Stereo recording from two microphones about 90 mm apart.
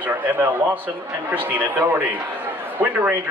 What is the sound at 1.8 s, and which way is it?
Speech, 25° right (ahead or behind).